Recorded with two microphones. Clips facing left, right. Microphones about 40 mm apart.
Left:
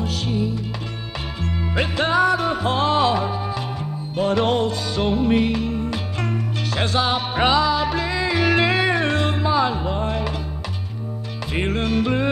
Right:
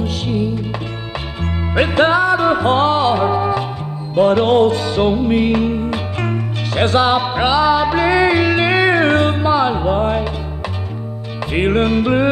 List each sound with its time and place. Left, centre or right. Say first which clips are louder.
0.0 s music: right 4 dB; right
2.1 s music: right 3 dB; centre
2.4 s music: right 7 dB; right
2.9 s music: right 3 dB; centre
3.2 s music: right 8 dB; right
5.1 s music: right 3 dB; centre
5.5 s music: right 7 dB; right
5.8 s music: right 5 dB; right
7.3 s music: right 3 dB; centre
7.6 s music: right 6 dB; right
8.0 s music: right 9 dB; right
8.5 s music: right 3 dB; centre
8.7 s music: right 7 dB; right
11.5 s music: right 7 dB; right